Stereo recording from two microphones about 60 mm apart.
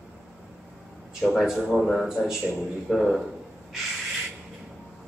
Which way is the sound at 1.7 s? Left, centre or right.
Centre.